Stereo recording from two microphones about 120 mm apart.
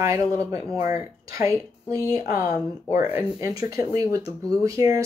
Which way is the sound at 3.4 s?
30° right (ahead or behind).